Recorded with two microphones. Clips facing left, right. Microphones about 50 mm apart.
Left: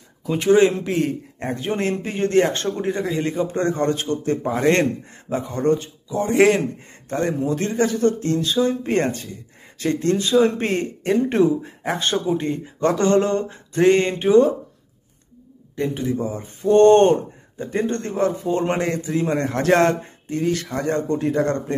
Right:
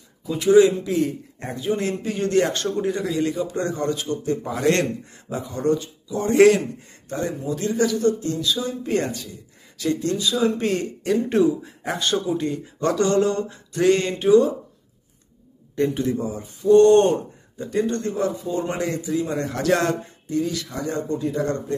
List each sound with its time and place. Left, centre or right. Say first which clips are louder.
0.3 s speech: right 1 dB; left
4.4 s speech: left 3 dB; left
6.2 s a man's voice: right 2 dB; centre
7.1 s speech: left 4 dB; left
15.7 s a man's voice: right 2 dB; centre
16.2 s speech: left 2 dB; left